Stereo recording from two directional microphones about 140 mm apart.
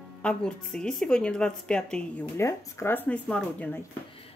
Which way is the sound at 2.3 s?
20° left (ahead or behind).